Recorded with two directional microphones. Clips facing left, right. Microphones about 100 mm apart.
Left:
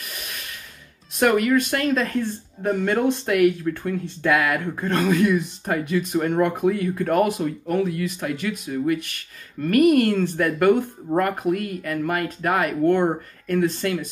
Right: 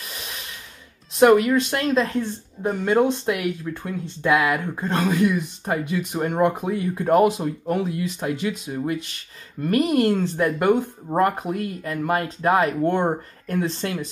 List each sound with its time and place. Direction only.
1.2 s speech: 25° right (ahead or behind)